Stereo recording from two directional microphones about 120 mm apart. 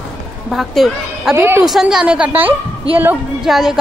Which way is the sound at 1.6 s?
5° right (ahead or behind).